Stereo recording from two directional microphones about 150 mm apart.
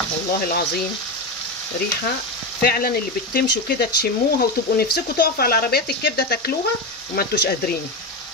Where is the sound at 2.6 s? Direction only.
85° left.